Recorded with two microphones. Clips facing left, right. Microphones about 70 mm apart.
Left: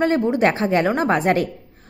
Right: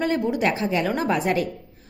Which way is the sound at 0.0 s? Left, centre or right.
Left.